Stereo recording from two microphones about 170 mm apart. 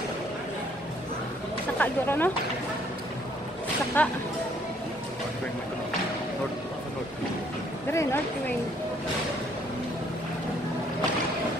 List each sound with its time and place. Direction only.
1.8 s speech: 10° left (ahead or behind)
4.0 s speech: 10° left (ahead or behind)
7.9 s speech: 15° left (ahead or behind)